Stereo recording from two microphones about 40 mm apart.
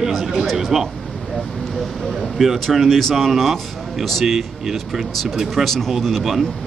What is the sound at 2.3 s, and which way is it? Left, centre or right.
Speech, centre.